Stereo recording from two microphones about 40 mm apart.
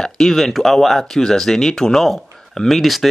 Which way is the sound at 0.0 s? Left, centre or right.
Centre.